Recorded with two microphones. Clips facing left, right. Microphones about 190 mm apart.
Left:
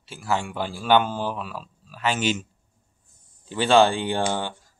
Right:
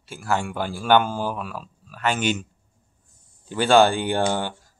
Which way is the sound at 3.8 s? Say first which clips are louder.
Right 2 dB; 25° left (ahead or behind).